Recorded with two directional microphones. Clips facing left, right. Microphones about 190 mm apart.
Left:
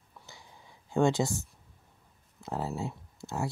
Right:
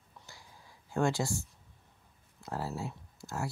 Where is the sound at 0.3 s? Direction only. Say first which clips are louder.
Left 3 dB; 20° left (ahead or behind).